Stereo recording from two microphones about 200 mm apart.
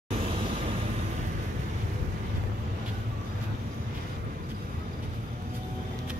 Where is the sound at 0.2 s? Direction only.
30° right (ahead or behind).